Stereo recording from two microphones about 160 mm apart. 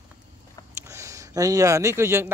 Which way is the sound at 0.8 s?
20° right (ahead or behind).